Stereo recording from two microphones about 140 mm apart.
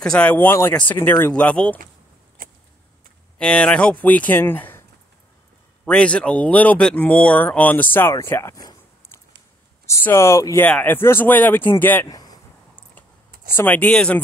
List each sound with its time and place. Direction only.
0.0 s speech: 5° left (ahead or behind)
3.3 s speech: 5° left (ahead or behind)
5.9 s speech: 10° left (ahead or behind)
12.1 s a sound: 30° left (ahead or behind)
13.6 s speech: 10° left (ahead or behind)